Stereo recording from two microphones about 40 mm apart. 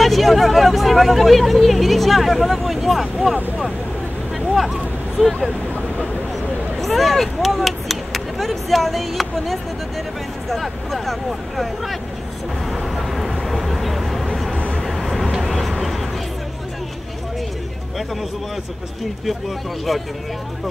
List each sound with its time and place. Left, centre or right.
0.0 s speech: centre
5.2 s speech: centre
6.8 s speech: centre
12.6 s vehicle: centre
19.9 s speech: centre